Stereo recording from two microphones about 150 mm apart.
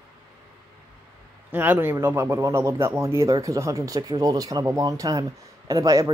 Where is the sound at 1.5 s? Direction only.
15° right (ahead or behind).